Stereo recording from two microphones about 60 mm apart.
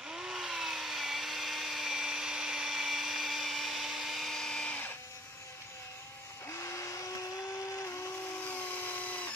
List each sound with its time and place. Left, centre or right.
0.1 s chainsaw: centre
6.5 s a sound: left
8.5 s drill: left